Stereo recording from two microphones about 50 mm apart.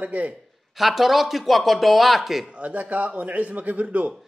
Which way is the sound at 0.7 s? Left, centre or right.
Centre.